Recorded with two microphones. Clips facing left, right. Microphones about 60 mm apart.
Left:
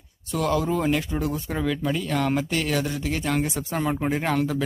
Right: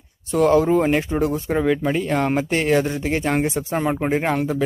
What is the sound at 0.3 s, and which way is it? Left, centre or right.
Speech, right.